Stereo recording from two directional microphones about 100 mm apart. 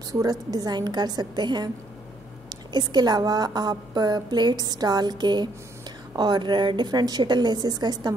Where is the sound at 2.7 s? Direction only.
45° right (ahead or behind).